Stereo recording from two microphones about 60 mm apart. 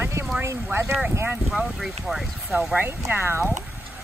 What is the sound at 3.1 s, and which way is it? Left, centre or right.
Speech, right.